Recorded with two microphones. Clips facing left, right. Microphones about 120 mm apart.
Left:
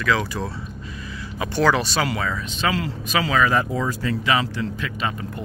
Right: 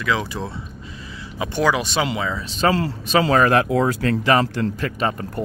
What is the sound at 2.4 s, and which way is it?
Speech, 35° right (ahead or behind).